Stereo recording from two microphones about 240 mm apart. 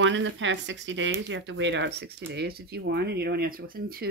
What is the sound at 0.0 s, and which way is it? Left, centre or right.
Speech, right.